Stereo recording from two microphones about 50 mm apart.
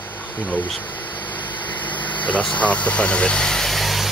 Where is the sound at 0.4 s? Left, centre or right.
Left.